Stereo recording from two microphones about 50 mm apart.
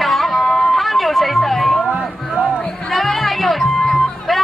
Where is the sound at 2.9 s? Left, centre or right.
Centre.